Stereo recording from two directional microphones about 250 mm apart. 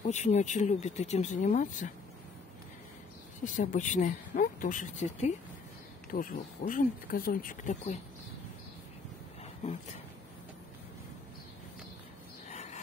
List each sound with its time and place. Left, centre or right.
0.0 s speech: left
3.4 s speech: left
12.4 s a sound: left